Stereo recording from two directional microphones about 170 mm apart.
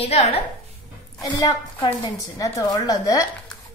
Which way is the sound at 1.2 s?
25° left (ahead or behind).